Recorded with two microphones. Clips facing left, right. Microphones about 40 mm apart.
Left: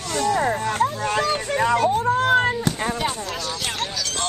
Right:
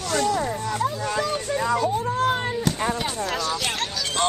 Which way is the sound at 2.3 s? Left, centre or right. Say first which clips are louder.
Left 6 dB; left.